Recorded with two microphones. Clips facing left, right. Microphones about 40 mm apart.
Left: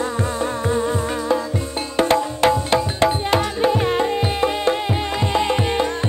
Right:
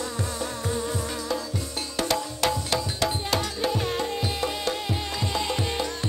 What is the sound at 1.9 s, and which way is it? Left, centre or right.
Music, left.